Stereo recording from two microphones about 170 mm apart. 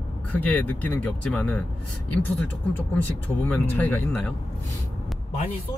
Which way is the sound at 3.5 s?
10° left (ahead or behind).